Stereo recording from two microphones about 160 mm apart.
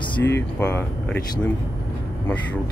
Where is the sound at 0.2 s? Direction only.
15° left (ahead or behind).